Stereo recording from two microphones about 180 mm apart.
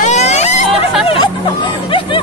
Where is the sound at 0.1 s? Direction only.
40° left (ahead or behind).